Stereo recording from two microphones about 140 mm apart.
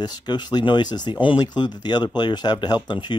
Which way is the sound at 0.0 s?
30° left (ahead or behind).